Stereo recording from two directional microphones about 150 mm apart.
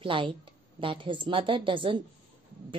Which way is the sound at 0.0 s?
35° right (ahead or behind).